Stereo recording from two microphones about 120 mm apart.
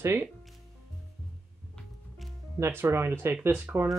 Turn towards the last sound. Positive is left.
turn(degrees=-15)  # may be behind; listen again after turning